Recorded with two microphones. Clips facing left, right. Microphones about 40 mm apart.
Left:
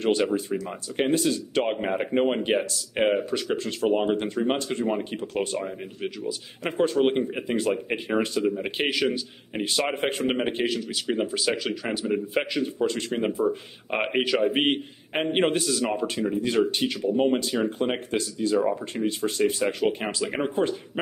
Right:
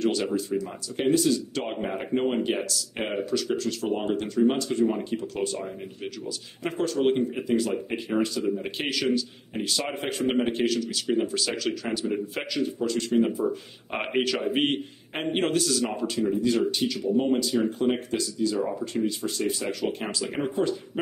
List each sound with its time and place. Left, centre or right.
0.0 s speech: left
5.6 s speech: centre; by 10.2 s left
10.2 s speech: left
12.8 s speech: left
13.8 s speech: centre
16.4 s speech: left